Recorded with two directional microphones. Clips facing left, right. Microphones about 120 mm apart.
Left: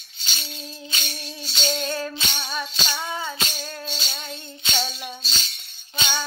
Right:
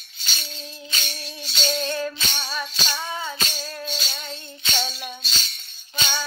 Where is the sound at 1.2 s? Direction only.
30° left (ahead or behind).